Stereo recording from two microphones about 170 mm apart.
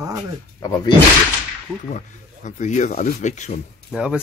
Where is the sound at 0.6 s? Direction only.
20° left (ahead or behind).